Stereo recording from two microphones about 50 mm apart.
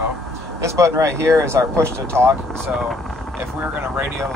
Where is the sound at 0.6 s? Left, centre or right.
Right.